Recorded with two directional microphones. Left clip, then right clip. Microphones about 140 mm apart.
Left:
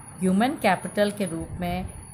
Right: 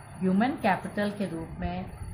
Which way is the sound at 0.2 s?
55° left (ahead or behind).